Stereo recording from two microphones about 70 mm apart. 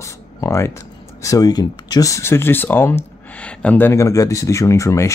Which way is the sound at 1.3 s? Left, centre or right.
Left.